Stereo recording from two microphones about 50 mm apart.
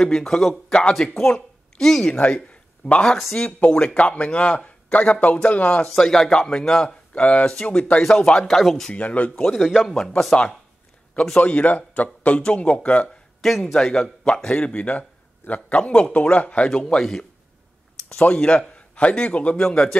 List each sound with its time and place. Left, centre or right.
0.0 s a man's voice: centre
0.7 s a man's voice: centre
3.2 s speech: centre
3.4 s a man's voice: left
5.9 s a man's voice: centre
7.2 s a man's voice: left
8.0 s a man's voice: centre
8.9 s a man's voice: left
9.6 s speech: centre
9.9 s a man's voice: centre
11.3 s a man's voice: left
13.4 s a man's voice: centre
13.7 s a man's voice: centre
18.3 s a man's voice: left